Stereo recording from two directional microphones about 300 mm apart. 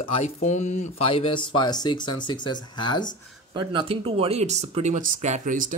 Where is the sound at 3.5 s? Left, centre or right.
Centre.